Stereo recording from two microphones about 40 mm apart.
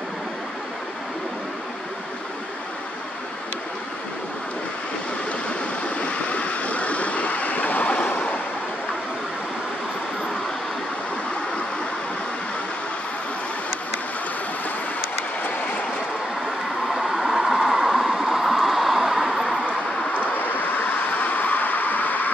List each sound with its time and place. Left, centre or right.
5.9 s vehicle: left
16.4 s vehicle: centre
20.2 s vehicle: left